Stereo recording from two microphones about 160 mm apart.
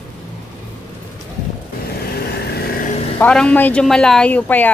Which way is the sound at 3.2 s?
5° left (ahead or behind).